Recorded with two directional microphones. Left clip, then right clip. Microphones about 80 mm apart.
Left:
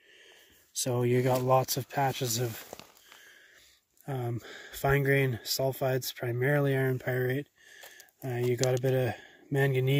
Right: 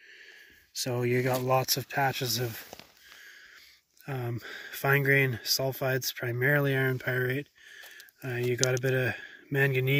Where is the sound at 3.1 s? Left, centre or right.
Left.